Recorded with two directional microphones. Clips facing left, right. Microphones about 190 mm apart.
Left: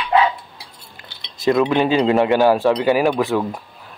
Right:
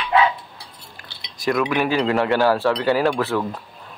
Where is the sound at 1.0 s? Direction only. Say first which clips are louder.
Left 1 dB; 20° left (ahead or behind).